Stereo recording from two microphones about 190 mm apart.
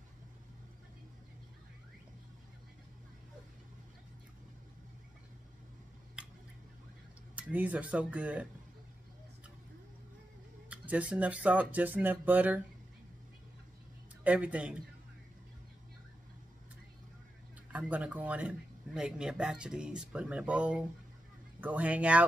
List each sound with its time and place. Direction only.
7.3 s speech: 10° right (ahead or behind)
10.7 s speech: 5° right (ahead or behind)
14.2 s speech: 5° right (ahead or behind)
17.7 s speech: 10° right (ahead or behind)